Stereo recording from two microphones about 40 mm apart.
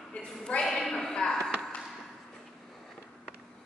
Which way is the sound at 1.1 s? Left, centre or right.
Centre.